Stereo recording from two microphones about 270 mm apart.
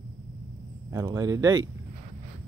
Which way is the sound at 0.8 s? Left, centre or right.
Centre.